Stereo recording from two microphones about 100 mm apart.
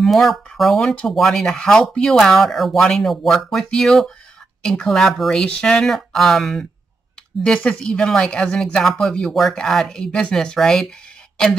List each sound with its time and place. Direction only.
0.0 s speech: centre (ahead or behind)